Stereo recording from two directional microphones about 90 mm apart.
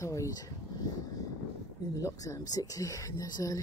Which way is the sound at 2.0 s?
40° left (ahead or behind).